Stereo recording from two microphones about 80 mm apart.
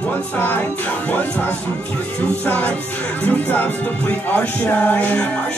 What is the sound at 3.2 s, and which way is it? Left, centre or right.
Speech, left.